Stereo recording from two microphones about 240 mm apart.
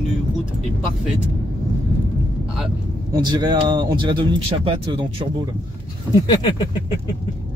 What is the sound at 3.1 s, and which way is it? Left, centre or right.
Speech, centre.